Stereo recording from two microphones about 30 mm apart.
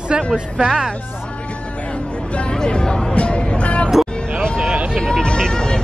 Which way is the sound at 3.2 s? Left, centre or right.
Left.